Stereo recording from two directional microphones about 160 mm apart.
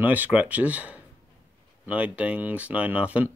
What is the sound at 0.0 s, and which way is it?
Speech, 10° right (ahead or behind).